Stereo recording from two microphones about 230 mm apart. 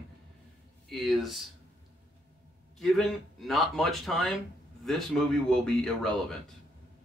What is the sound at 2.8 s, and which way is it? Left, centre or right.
A man's voice, centre.